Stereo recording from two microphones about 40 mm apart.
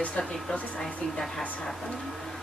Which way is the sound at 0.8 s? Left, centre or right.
Centre.